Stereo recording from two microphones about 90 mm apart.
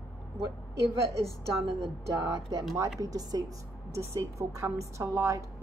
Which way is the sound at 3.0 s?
45° right (ahead or behind).